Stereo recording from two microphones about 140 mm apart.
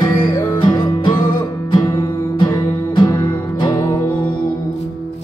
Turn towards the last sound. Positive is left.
turn(degrees=35)  # may be behind; listen again after turning